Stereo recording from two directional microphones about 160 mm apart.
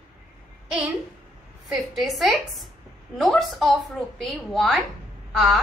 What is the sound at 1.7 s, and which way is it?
A woman's voice, centre (ahead or behind).